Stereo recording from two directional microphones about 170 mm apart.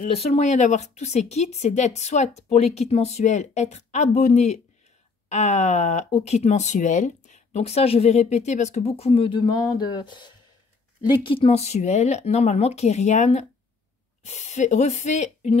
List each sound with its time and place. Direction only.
0.0 s speech: 35° left (ahead or behind)